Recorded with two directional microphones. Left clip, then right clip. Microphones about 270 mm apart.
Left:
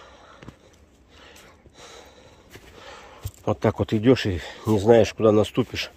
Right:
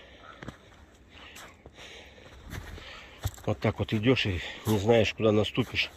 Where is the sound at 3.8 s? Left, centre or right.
Left.